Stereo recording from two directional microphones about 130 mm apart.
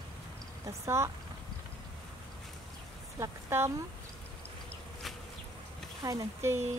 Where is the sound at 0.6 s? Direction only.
20° right (ahead or behind).